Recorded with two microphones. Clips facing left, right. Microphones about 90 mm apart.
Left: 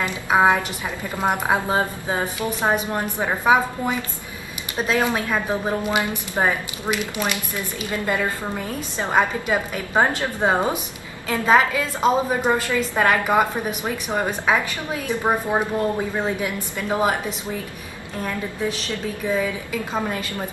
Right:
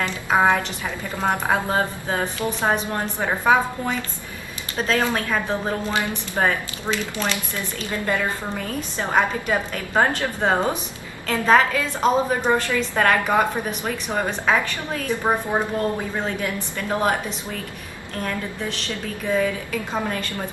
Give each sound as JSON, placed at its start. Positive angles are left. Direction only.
{"t": 0.0, "sound": "a woman's voice", "side_deg": 10}
{"t": 19.2, "sound": "a woman's voice", "side_deg": 5}